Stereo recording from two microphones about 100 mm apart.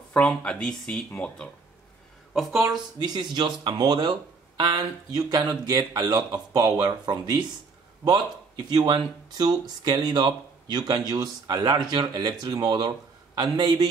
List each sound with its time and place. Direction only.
0.1 s speech: 10° left (ahead or behind)
2.3 s speech: centre (ahead or behind)
3.1 s speech: 45° right (ahead or behind)
8.6 s speech: 45° right (ahead or behind)